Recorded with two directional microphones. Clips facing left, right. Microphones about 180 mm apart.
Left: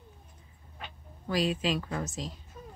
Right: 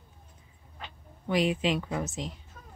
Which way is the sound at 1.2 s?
20° right (ahead or behind).